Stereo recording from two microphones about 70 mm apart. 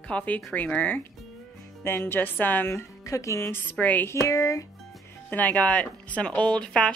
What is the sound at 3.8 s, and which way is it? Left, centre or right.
Speech, left.